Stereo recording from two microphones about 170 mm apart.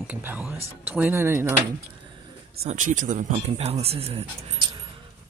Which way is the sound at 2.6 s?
50° right (ahead or behind).